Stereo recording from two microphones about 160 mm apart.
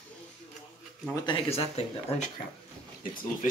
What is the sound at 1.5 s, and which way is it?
Speech, 40° left (ahead or behind).